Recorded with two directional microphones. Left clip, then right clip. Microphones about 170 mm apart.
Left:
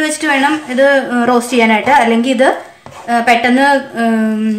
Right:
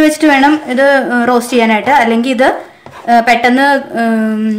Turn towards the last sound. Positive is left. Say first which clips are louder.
# right 1 dB
turn(degrees=-55)  # may be behind; listen again after turning